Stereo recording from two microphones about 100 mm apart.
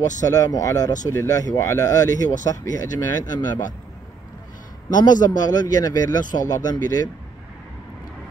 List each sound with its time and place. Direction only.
0.2 s speech: 35° left (ahead or behind)
4.8 s speech: 45° left (ahead or behind)